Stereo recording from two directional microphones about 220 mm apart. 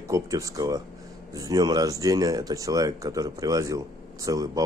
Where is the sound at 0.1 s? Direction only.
15° right (ahead or behind).